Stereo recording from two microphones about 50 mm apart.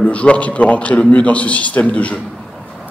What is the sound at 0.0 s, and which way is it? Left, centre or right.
A man's voice, left.